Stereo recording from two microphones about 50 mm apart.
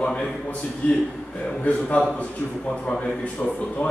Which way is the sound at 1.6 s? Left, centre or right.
Left.